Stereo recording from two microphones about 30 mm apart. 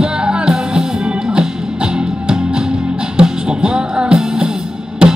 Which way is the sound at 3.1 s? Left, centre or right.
Right.